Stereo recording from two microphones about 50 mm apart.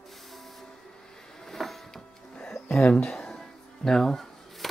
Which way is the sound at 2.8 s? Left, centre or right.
Centre.